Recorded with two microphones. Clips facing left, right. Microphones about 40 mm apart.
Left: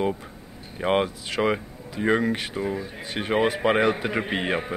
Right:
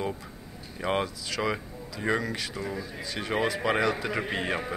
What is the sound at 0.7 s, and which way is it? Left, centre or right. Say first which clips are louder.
A man's voice: left 6 dB; left.